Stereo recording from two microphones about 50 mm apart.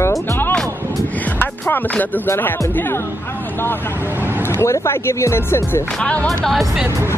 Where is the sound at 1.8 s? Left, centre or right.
Left.